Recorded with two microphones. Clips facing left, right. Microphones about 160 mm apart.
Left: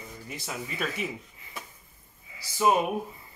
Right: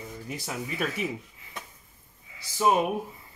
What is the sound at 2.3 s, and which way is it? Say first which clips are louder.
Speech: even; centre (ahead or behind).